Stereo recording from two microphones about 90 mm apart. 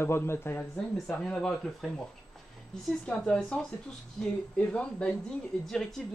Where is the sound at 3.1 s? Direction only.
10° left (ahead or behind).